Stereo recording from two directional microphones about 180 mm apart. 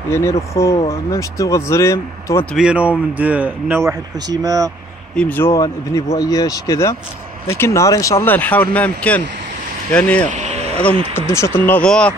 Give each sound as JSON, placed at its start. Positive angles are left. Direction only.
{"t": 0.1, "sound": "speech", "side_deg": 15}
{"t": 2.5, "sound": "a man's voice", "side_deg": -5}
{"t": 5.1, "sound": "speech", "side_deg": 10}
{"t": 10.3, "sound": "vehicle", "side_deg": -40}
{"t": 11.1, "sound": "speech", "side_deg": 15}